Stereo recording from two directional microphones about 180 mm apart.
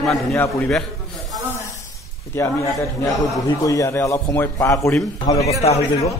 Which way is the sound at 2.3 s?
15° left (ahead or behind).